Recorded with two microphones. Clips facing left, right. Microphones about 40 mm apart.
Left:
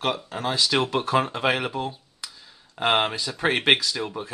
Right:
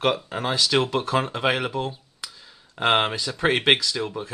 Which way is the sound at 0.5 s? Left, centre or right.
Centre.